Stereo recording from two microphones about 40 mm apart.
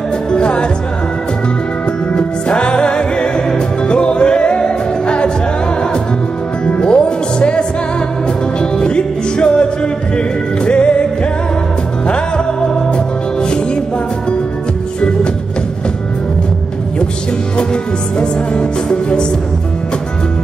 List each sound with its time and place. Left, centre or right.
0.3 s music: left
2.1 s music: left
6.8 s music: left
12.9 s music: left
18.2 s music: left